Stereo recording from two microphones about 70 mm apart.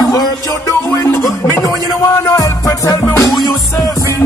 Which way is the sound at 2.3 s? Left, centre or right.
Left.